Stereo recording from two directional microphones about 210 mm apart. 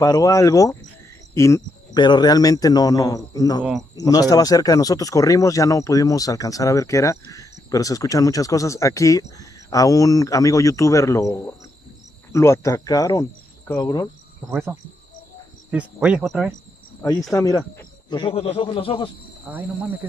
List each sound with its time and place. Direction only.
0.0 s speech: 15° left (ahead or behind)
14.5 s speech: 10° right (ahead or behind)
17.3 s speech: 15° left (ahead or behind)
19.4 s speech: 10° right (ahead or behind)